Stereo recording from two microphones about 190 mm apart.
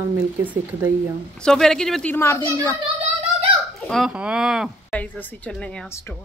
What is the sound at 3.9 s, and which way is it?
Speech, 5° right (ahead or behind).